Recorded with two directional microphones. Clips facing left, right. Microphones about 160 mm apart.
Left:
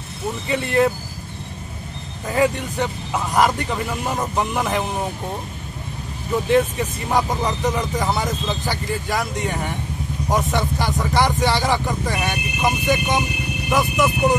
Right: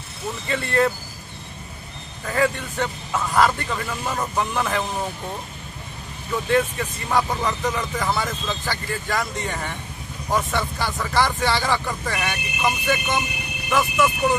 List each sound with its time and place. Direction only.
0.5 s speech: 15° left (ahead or behind)
2.2 s speech: 15° left (ahead or behind)
6.5 s speech: 15° left (ahead or behind)